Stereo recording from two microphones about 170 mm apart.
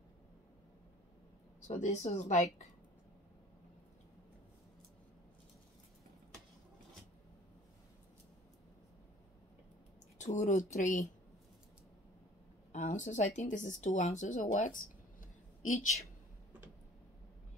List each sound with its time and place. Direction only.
1.7 s speech: 40° left (ahead or behind)
10.1 s speech: 45° left (ahead or behind)
12.7 s speech: 45° left (ahead or behind)